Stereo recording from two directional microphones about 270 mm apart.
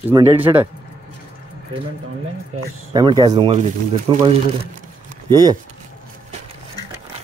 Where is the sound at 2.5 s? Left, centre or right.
Right.